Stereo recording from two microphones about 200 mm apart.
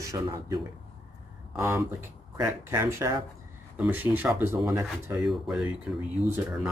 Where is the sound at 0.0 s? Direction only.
15° right (ahead or behind).